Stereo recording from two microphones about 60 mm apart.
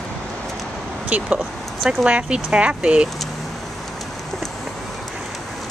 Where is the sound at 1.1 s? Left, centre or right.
Right.